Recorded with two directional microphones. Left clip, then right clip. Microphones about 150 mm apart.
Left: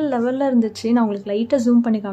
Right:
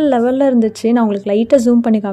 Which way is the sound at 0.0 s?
30° right (ahead or behind).